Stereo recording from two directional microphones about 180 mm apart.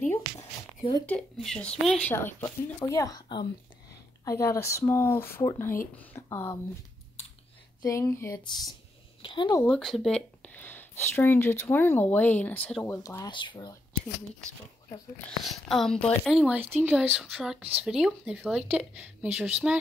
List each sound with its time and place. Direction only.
1.0 s speech: 5° left (ahead or behind)
7.8 s speech: 15° left (ahead or behind)
9.7 s speech: centre (ahead or behind); by 13.7 s 25° left (ahead or behind)
15.4 s a woman's voice: centre (ahead or behind)